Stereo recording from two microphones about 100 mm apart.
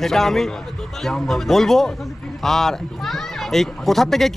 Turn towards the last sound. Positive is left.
turn(degrees=5)  # may be behind; listen again after turning